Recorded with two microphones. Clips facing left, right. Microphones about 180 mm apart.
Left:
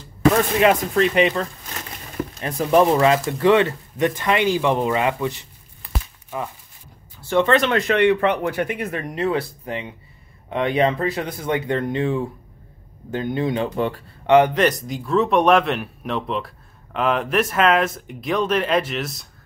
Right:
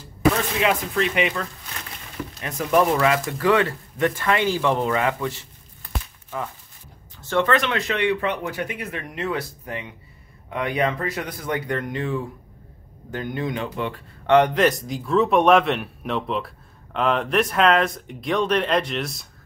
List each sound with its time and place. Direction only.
0.6 s speech: 50° left (ahead or behind)
1.1 s speech: 35° left (ahead or behind); by 5.9 s 15° left (ahead or behind)
7.2 s a sound: 15° left (ahead or behind)
7.4 s speech: 30° left (ahead or behind)
7.7 s speech: 55° left (ahead or behind); by 13.9 s 35° left (ahead or behind)
14.2 s speech: 5° left (ahead or behind)